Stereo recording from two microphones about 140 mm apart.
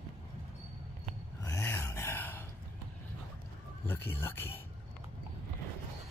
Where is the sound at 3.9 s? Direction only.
15° left (ahead or behind).